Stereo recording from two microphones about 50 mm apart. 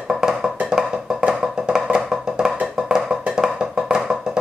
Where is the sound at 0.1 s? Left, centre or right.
Centre.